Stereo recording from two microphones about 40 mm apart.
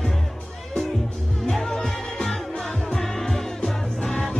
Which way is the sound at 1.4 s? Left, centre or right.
Centre.